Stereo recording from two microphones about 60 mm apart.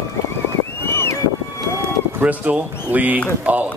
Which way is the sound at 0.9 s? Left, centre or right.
Left.